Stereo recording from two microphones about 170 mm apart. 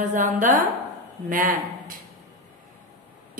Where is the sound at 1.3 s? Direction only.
55° right (ahead or behind).